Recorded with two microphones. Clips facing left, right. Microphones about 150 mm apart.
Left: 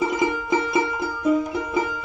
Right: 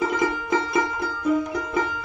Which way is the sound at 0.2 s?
10° left (ahead or behind).